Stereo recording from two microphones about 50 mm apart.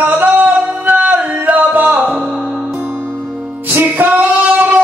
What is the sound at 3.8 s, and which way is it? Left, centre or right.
Singing, right.